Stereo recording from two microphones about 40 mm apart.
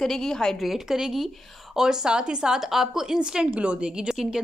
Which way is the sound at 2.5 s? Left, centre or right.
Centre.